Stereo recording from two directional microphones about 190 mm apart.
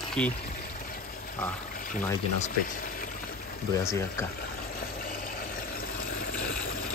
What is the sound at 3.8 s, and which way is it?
Speech, 15° left (ahead or behind).